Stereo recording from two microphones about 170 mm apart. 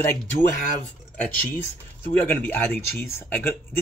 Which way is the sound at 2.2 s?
10° left (ahead or behind).